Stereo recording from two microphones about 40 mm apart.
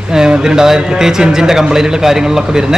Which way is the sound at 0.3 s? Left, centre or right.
Centre.